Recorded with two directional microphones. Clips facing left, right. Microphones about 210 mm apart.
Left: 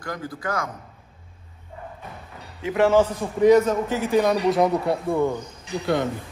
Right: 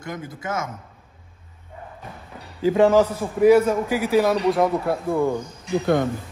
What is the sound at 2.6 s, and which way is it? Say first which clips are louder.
Speech: right 4 dB; 25° right (ahead or behind).